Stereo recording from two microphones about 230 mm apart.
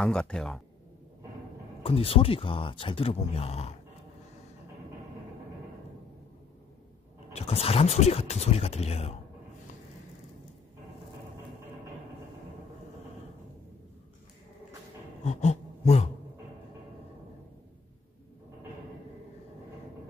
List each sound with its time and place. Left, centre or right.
0.0 s speech: centre
1.8 s speech: left
7.3 s speech: left
15.2 s speech: left